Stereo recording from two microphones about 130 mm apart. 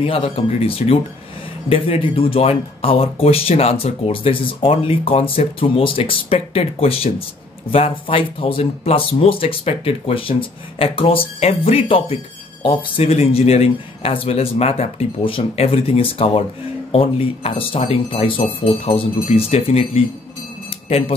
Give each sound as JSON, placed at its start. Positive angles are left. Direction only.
{"t": 0.0, "sound": "speech", "side_deg": 50}